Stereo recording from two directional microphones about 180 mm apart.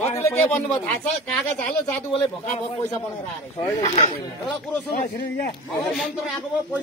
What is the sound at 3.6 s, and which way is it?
Speech, 15° left (ahead or behind).